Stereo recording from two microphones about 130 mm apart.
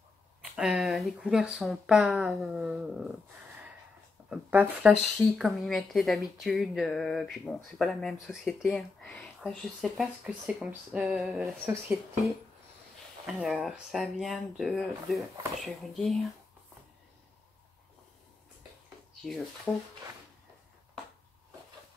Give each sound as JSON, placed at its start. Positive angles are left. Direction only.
{"t": 0.6, "sound": "speech", "side_deg": 0}
{"t": 4.3, "sound": "speech", "side_deg": -10}
{"t": 10.4, "sound": "speech", "side_deg": -10}
{"t": 13.3, "sound": "speech", "side_deg": 0}
{"t": 19.2, "sound": "speech", "side_deg": 0}